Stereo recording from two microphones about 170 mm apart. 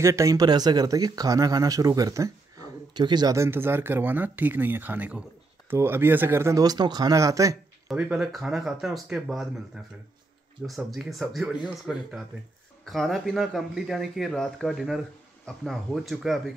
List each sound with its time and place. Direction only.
0.0 s speech: 15° right (ahead or behind)
7.9 s speech: 5° right (ahead or behind)
10.8 s speech: centre (ahead or behind)